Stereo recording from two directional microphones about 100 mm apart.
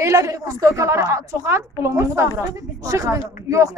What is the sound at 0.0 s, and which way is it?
A woman's voice, 30° right (ahead or behind).